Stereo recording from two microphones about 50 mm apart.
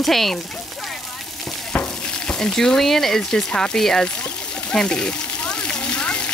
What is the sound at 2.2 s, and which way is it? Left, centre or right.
Speech, centre.